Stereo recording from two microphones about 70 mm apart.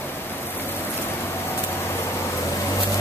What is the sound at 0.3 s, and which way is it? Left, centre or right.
Vehicle, left.